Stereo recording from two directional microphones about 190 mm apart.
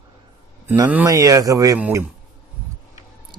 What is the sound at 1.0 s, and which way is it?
A man's voice, 20° right (ahead or behind).